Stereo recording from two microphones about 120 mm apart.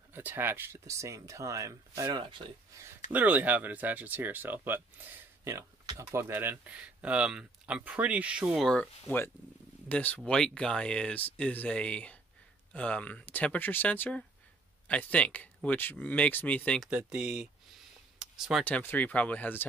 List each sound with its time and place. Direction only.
0.1 s speech: 15° right (ahead or behind)
2.1 s speech: 45° right (ahead or behind)
3.1 s speech: 15° right (ahead or behind)
9.0 s speech: 20° left (ahead or behind)
16.9 s speech: 10° right (ahead or behind)
18.2 s a sound: 5° right (ahead or behind)
18.6 s speech: 15° left (ahead or behind)